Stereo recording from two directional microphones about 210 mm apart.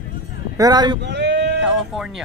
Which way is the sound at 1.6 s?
Centre (ahead or behind).